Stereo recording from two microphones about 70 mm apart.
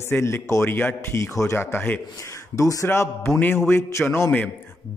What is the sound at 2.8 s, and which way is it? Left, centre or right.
A man's voice, left.